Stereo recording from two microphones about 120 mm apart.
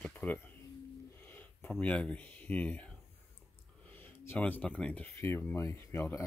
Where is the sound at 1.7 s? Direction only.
10° left (ahead or behind).